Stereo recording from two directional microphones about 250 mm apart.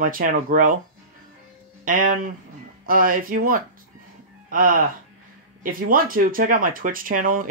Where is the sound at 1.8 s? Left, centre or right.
Right.